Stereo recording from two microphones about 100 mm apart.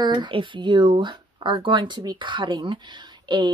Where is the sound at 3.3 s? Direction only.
50° right (ahead or behind).